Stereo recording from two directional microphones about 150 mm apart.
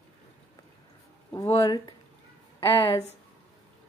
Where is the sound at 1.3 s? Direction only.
25° left (ahead or behind).